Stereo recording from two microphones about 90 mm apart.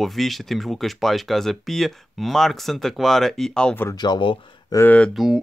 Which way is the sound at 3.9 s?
50° left (ahead or behind).